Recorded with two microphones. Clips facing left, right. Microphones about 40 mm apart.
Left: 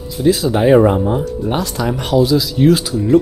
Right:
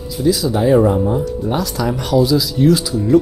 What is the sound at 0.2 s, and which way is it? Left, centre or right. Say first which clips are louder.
Speech: left 2 dB; left.